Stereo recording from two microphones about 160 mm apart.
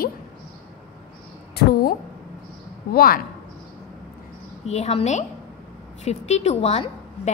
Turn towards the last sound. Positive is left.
turn(degrees=40)  # may be behind; listen again after turning